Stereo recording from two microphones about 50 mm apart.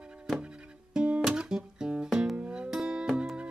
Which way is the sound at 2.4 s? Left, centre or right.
Centre.